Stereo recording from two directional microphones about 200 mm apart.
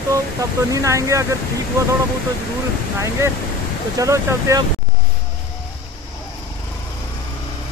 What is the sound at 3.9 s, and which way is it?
Speech, 15° right (ahead or behind).